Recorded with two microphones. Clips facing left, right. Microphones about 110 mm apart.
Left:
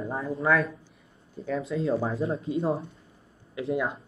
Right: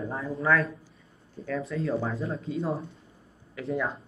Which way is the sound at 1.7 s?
30° left (ahead or behind).